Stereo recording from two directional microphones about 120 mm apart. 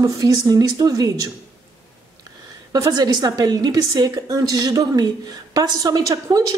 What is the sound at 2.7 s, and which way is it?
A woman's voice, 30° right (ahead or behind).